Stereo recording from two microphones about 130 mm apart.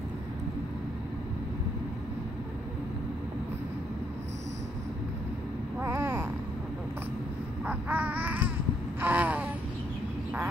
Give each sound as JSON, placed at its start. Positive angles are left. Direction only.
{"t": 5.8, "sound": "vehicle", "side_deg": -20}
{"t": 7.6, "sound": "babbling", "side_deg": -10}
{"t": 9.0, "sound": "a sound", "side_deg": -10}